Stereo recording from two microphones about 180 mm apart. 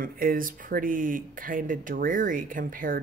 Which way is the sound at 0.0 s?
55° right (ahead or behind).